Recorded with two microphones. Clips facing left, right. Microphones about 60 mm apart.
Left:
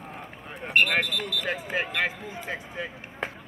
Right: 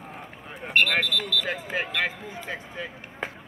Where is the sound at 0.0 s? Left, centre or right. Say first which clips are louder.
Even; centre.